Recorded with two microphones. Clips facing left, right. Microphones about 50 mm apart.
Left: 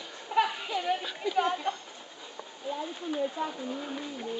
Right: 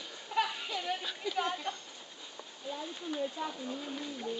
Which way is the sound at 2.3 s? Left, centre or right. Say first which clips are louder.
Left 6 dB; centre.